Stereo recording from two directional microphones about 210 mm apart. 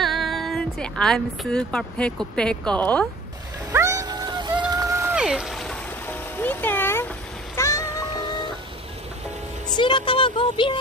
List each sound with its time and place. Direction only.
0.0 s speech: centre (ahead or behind)
3.7 s a sound: 15° right (ahead or behind); by 7.1 s 10° left (ahead or behind)
7.5 s music: 15° left (ahead or behind)
9.8 s speech: 25° left (ahead or behind)